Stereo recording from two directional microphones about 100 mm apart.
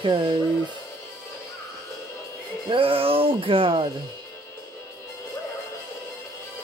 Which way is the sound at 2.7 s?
65° right (ahead or behind).